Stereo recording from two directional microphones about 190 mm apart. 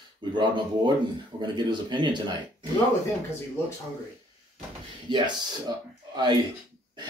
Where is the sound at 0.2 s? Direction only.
25° right (ahead or behind).